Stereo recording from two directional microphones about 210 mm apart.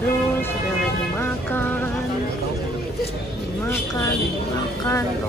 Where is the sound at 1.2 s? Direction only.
10° left (ahead or behind).